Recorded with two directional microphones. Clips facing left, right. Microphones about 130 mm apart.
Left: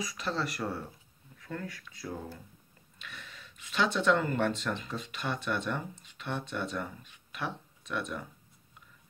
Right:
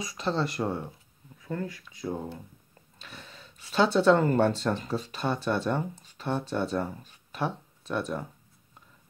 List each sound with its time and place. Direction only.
0.0 s speech: 25° right (ahead or behind)